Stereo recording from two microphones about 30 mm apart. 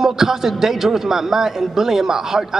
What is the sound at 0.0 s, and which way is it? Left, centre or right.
A man's voice, centre.